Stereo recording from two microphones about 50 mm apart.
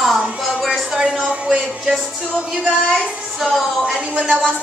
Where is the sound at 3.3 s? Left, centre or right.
Centre.